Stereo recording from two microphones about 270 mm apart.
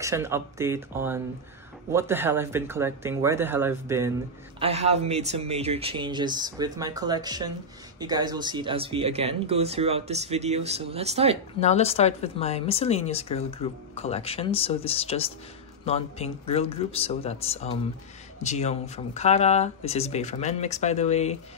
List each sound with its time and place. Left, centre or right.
0.0 s speech: centre
4.6 s speech: right
11.6 s speech: left